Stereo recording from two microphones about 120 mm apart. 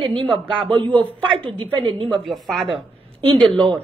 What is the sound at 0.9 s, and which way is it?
Speech, 10° left (ahead or behind).